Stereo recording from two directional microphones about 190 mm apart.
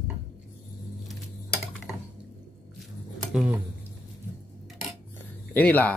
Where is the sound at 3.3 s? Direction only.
5° right (ahead or behind).